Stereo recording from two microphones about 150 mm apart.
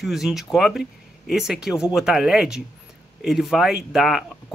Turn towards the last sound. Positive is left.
turn(degrees=0)  # may be behind; listen again after turning